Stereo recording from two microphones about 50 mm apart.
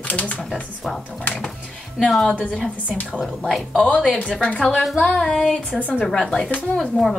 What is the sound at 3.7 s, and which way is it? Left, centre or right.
A woman's voice, left.